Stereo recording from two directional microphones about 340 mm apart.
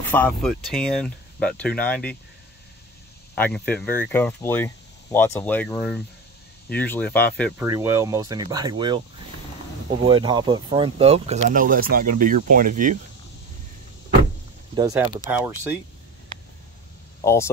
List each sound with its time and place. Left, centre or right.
0.1 s speech: centre
3.3 s speech: centre
7.6 s speech: centre
10.0 s speech: centre
14.8 s speech: centre
17.2 s speech: centre